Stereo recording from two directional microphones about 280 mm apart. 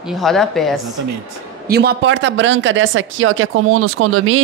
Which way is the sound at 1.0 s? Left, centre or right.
Right.